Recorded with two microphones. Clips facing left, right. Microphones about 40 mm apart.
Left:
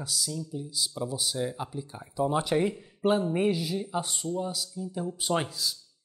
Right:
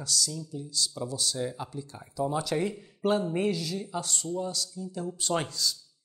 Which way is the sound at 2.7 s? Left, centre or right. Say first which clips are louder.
Left 1 dB; centre.